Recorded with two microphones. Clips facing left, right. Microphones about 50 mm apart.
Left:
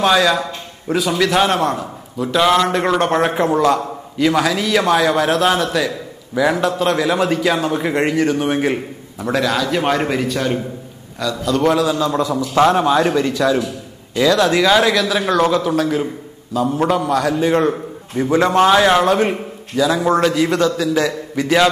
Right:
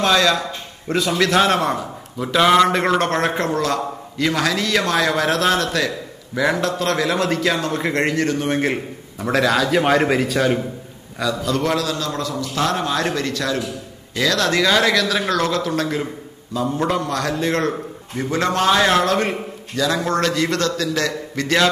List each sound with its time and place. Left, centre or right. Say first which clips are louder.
0.0 s a man's voice: left 2 dB; centre
11.8 s a man's voice: left 6 dB; centre